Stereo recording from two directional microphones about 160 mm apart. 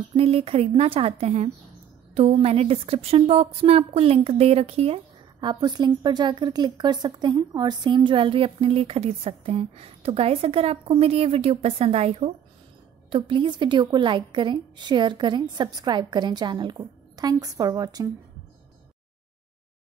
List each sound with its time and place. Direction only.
0.1 s a woman's voice: 35° right (ahead or behind); by 18.1 s 20° right (ahead or behind)